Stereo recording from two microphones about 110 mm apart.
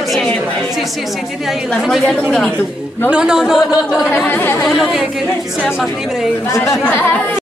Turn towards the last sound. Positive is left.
turn(degrees=30)  # may be behind; listen again after turning